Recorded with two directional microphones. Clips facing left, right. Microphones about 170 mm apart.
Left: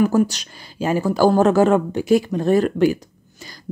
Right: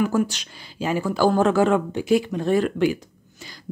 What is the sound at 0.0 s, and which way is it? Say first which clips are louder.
Speech: left 5 dB; 40° left (ahead or behind).